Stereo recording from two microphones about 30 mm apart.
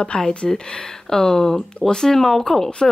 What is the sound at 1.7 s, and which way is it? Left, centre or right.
Speech, left.